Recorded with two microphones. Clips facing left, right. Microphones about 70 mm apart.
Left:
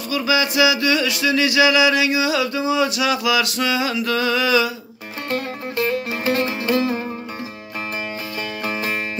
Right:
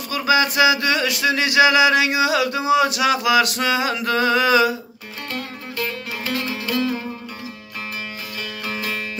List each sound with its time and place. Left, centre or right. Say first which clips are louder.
0.1 s a sound: right 1 dB; right
5.3 s music: left 6 dB; left
8.6 s music: left 2 dB; left